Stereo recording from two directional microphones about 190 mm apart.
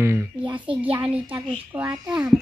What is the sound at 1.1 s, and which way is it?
Speech, 10° right (ahead or behind).